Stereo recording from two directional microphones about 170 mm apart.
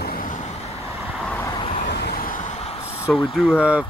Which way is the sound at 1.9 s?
70° left (ahead or behind).